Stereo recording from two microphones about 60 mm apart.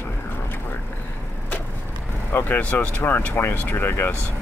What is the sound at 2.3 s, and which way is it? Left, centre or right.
Speech, left.